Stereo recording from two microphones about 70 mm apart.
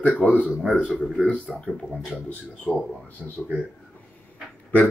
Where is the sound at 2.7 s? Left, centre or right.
Centre.